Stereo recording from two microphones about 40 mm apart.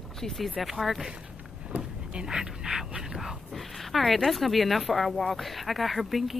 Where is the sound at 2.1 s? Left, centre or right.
Centre.